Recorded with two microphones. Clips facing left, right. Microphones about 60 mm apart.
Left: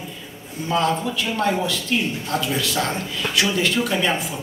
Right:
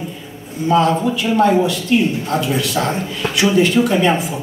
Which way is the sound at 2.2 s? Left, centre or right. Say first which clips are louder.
Right 5 dB; right.